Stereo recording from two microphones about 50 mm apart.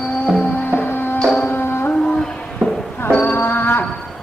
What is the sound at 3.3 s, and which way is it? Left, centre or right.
Livestock, left.